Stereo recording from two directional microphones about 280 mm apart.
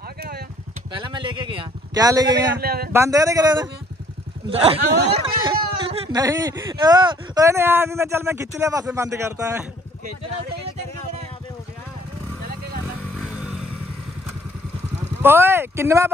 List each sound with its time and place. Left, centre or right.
0.9 s speech: centre
2.6 s speech: right
2.9 s speech: centre
13.4 s vehicle: centre
15.2 s speech: centre